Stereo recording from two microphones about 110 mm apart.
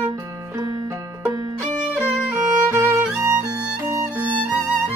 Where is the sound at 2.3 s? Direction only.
25° right (ahead or behind).